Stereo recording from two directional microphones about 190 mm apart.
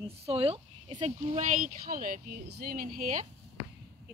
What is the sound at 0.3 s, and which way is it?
Speech, 30° right (ahead or behind).